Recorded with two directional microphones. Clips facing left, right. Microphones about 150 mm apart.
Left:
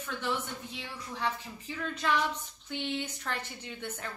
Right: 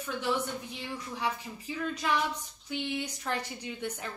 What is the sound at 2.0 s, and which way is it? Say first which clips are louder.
A woman's voice: left 2 dB; 10° right (ahead or behind).